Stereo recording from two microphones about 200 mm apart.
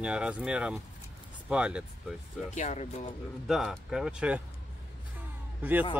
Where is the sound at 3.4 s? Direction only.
Centre (ahead or behind).